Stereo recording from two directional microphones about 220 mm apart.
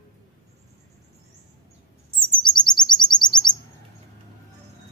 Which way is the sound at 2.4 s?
20° left (ahead or behind).